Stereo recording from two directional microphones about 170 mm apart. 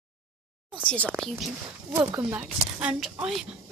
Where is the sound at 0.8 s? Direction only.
5° left (ahead or behind).